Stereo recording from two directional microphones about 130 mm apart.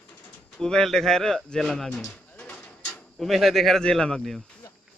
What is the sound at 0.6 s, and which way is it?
Speech, 5° left (ahead or behind).